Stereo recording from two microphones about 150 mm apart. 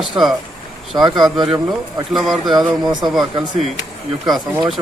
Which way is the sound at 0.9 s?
25° right (ahead or behind).